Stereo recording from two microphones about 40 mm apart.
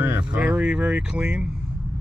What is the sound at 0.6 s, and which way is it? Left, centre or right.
Speech, right.